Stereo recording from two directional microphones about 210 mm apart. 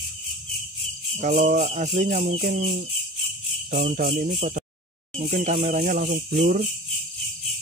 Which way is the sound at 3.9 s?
45° right (ahead or behind).